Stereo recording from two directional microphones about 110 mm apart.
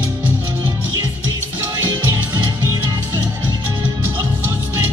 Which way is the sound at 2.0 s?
25° right (ahead or behind).